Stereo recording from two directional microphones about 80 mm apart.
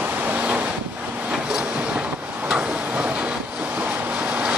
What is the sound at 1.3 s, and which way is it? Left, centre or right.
Train, centre.